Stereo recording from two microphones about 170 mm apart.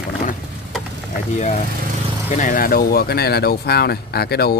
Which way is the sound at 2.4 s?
55° left (ahead or behind).